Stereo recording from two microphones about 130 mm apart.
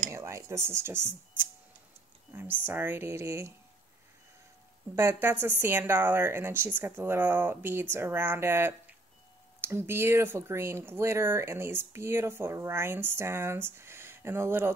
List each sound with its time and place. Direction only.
0.1 s speech: 20° right (ahead or behind)
2.6 s speech: 15° right (ahead or behind)
4.9 s speech: 20° right (ahead or behind)